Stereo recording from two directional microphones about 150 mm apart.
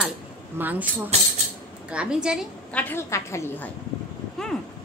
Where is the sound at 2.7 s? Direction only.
15° left (ahead or behind).